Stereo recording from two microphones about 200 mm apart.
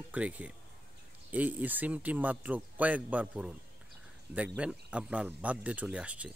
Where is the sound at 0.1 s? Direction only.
5° right (ahead or behind).